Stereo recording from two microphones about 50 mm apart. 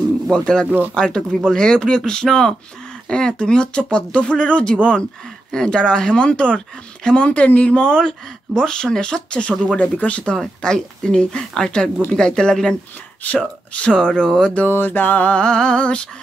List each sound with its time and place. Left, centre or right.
0.3 s speech: centre
0.7 s speech: right
0.9 s speech: centre
10.3 s speech: centre
13.2 s speech: left
14.7 s mantra: left
15.3 s speech: centre